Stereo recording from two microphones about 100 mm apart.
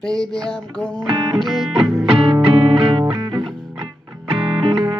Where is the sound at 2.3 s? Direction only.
50° right (ahead or behind).